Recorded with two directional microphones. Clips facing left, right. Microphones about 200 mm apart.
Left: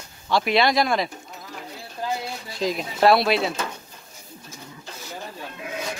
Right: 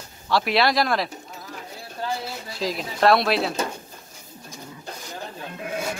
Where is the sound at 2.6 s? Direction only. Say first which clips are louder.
Left 2 dB; centre (ahead or behind).